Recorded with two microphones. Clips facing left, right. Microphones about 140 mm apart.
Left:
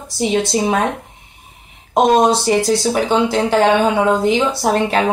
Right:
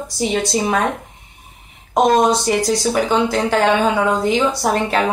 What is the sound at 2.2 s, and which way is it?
Speech, 30° left (ahead or behind).